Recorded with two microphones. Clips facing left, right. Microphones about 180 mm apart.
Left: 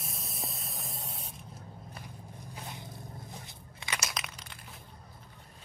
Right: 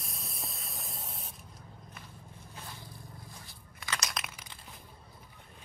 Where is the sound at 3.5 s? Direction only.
20° left (ahead or behind).